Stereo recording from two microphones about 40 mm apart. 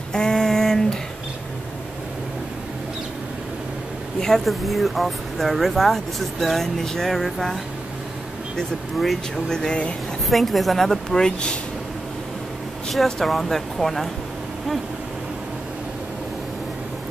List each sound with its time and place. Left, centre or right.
0.1 s a sound: centre
4.5 s speech: centre
9.5 s speech: centre
10.3 s speech: centre
12.9 s speech: centre